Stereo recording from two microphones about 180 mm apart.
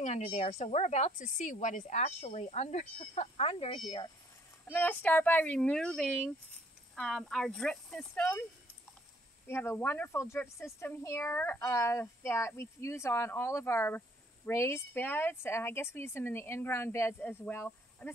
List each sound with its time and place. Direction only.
0.0 s speech: 35° left (ahead or behind)
4.6 s speech: 10° left (ahead or behind)
9.5 s speech: 10° left (ahead or behind)